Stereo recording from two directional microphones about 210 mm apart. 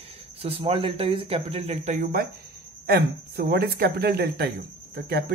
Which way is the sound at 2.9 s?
50° right (ahead or behind).